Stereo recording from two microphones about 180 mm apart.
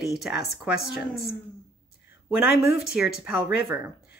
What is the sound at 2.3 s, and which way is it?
Speech, 5° right (ahead or behind).